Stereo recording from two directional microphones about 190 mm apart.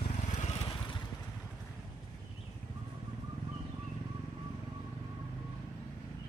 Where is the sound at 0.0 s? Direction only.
35° left (ahead or behind).